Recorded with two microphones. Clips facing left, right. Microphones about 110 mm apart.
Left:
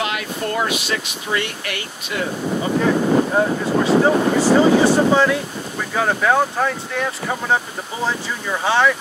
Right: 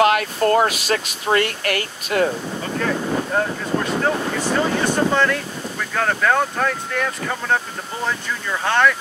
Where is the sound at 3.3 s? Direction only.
10° left (ahead or behind).